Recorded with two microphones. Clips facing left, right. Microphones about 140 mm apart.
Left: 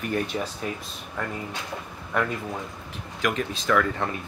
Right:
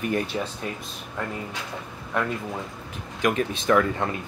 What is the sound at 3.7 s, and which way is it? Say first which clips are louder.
Speech: right 2 dB; 25° right (ahead or behind).